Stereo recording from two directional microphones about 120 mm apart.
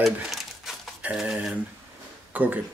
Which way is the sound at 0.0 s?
Centre (ahead or behind).